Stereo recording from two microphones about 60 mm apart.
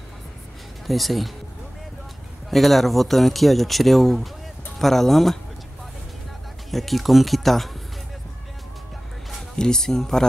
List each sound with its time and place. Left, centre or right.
0.8 s speech: centre
2.5 s speech: centre
6.7 s speech: centre
9.3 s speech: centre